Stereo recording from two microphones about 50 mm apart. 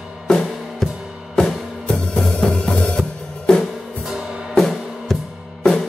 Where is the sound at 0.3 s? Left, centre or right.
Centre.